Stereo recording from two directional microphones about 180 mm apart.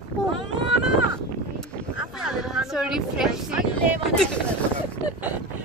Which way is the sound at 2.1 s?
Centre (ahead or behind).